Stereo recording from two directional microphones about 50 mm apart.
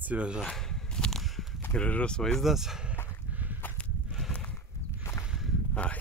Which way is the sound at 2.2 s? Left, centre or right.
Centre.